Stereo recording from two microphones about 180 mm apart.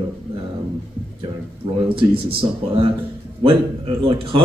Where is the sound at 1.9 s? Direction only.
30° right (ahead or behind).